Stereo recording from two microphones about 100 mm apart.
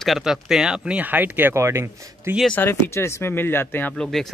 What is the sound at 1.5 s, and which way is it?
Speech, 30° right (ahead or behind).